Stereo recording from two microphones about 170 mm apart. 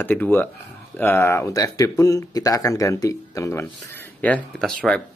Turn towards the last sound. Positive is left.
turn(degrees=5)  # may be behind; listen again after turning